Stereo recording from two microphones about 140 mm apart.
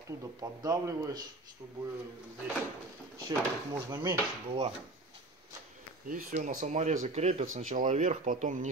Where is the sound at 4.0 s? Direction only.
45° right (ahead or behind).